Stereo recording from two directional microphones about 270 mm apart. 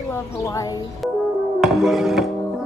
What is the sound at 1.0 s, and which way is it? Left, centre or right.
Music, centre.